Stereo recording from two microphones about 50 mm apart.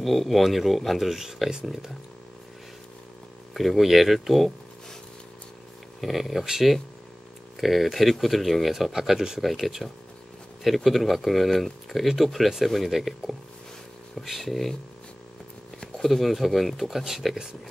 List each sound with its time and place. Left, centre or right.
0.0 s speech: centre
3.5 s speech: centre
5.9 s speech: centre
16.0 s speech: centre